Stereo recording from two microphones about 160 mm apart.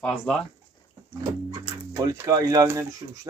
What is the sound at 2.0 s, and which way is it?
Speech, 20° right (ahead or behind).